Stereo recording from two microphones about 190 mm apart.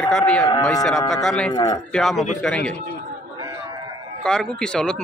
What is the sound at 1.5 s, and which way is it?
Speech, 25° left (ahead or behind).